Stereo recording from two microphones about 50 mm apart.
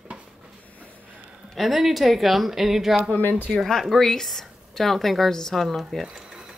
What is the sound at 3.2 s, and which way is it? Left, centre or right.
Speech, left.